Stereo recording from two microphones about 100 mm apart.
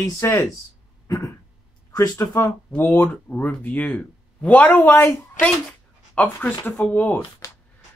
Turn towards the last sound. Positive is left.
turn(degrees=20)  # may be behind; listen again after turning